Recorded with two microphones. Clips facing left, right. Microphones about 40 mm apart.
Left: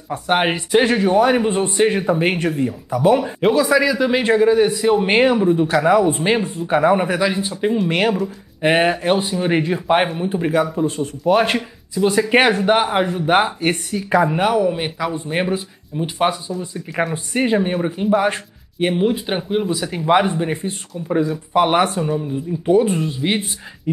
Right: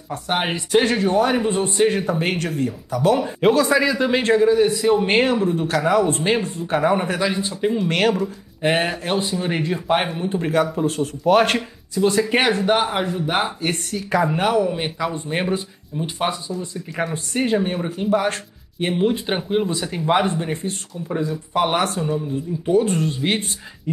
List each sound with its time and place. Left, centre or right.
0.1 s speech: left
3.3 s speech: centre
4.2 s speech: centre
8.6 s speech: left
17.3 s speech: left
22.8 s speech: centre